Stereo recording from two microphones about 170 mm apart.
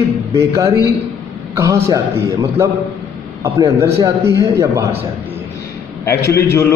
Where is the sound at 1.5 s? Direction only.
20° right (ahead or behind).